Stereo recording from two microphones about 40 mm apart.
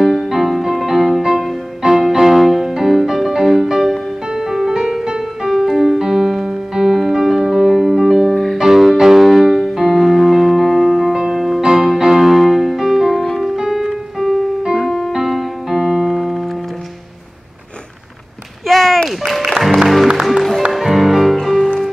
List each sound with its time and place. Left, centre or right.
0.0 s music: centre
1.2 s music: centre
2.7 s music: centre
5.5 s music: centre
8.5 s music: centre
14.8 s music: centre
15.1 s piano: centre
18.7 s a sound: centre
19.0 s music: centre